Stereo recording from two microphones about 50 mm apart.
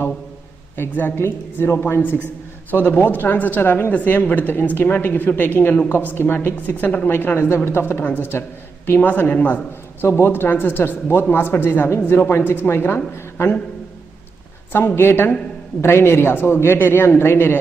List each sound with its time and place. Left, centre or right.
0.7 s a woman's voice: left
9.0 s a woman's voice: left
10.0 s a woman's voice: left
14.7 s a woman's voice: left